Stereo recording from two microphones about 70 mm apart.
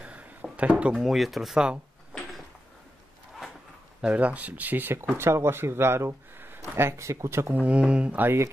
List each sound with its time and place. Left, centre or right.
0.0 s a sound: centre
0.9 s speech: centre
4.0 s speech: right
5.1 s speech: right
7.5 s speech: centre